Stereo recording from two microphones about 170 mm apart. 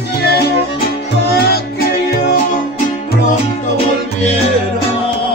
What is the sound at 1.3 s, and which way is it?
Music, 65° left (ahead or behind).